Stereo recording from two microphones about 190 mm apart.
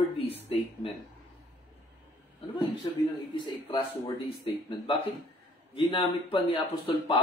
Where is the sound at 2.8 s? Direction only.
20° left (ahead or behind).